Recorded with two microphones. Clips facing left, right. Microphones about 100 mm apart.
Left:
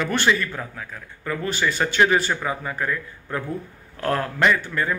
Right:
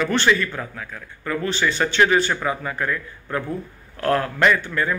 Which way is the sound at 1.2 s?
10° left (ahead or behind).